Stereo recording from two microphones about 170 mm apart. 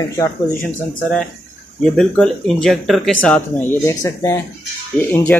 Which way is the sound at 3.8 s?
15° left (ahead or behind).